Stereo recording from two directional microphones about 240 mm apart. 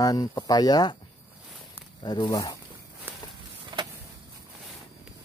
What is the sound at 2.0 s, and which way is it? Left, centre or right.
Speech, centre.